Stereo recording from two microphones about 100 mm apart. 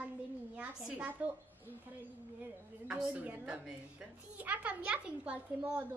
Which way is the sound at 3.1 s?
15° right (ahead or behind).